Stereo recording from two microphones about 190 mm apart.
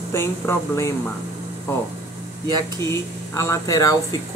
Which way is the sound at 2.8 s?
15° left (ahead or behind).